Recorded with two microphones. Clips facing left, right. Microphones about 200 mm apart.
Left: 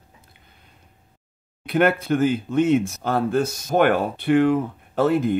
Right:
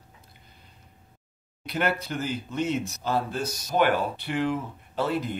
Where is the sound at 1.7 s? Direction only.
55° left (ahead or behind).